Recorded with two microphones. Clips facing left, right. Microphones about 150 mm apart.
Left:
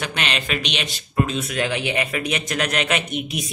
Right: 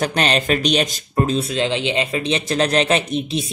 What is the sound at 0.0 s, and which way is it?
Speech, 40° right (ahead or behind).